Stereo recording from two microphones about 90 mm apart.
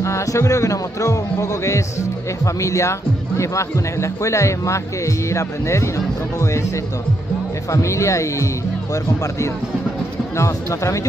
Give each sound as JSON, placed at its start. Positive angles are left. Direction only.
{"t": 0.0, "sound": "speech", "side_deg": 35}
{"t": 7.7, "sound": "speech", "side_deg": 35}
{"t": 10.3, "sound": "speech", "side_deg": 35}